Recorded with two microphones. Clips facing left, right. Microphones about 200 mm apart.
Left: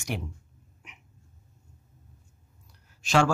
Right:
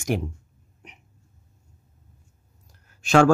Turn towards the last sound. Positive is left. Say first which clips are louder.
# right 6 dB
turn(degrees=-55)  # may be behind; listen again after turning